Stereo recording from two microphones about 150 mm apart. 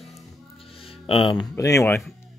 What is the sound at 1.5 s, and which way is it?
Speech, 20° left (ahead or behind).